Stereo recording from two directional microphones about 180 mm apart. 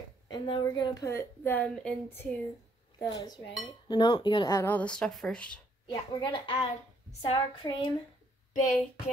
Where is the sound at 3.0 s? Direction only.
20° left (ahead or behind); by 5.6 s 5° left (ahead or behind).